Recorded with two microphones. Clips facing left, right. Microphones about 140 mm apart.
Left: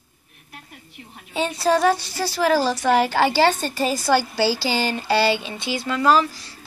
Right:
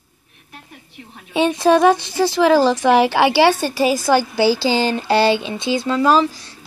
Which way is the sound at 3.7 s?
10° right (ahead or behind).